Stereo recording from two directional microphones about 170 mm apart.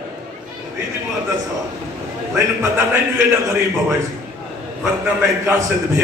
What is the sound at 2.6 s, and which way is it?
Music, 15° right (ahead or behind).